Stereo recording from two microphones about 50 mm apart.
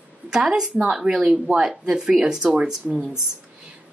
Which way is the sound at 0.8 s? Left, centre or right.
Centre.